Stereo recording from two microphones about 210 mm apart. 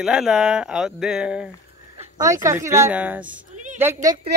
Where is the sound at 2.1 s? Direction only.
15° right (ahead or behind).